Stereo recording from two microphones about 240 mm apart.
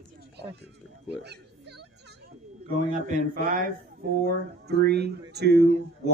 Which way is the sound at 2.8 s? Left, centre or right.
Right.